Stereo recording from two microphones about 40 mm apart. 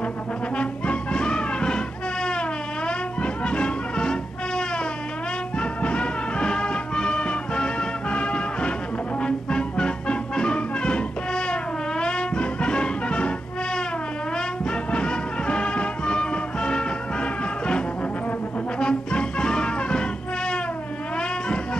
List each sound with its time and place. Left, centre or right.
0.6 s music: left
2.9 s music: left
14.3 s music: left